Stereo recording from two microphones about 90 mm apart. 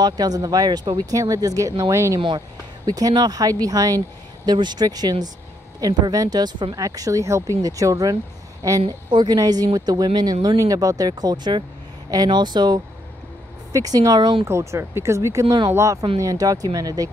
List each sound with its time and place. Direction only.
0.0 s speech: 45° right (ahead or behind)
2.1 s speech: 60° right (ahead or behind)
2.9 s speech: 45° right (ahead or behind)
4.5 s speech: 55° right (ahead or behind)
8.8 s speech: 60° right (ahead or behind)
9.4 s speech: 45° right (ahead or behind)
14.4 s speech: 30° right (ahead or behind)
15.4 s speech: 65° right (ahead or behind)
15.7 s speech: 35° right (ahead or behind)